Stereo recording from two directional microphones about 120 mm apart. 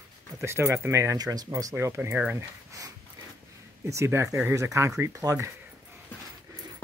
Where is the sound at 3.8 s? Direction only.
25° right (ahead or behind).